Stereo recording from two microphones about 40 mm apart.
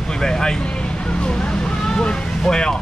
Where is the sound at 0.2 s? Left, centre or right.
Centre.